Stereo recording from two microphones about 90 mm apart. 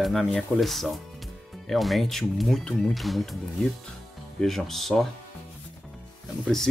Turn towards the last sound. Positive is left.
turn(degrees=5)  # may be behind; listen again after turning